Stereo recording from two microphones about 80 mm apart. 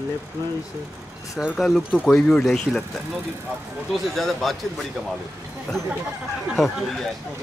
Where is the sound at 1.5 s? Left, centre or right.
Centre.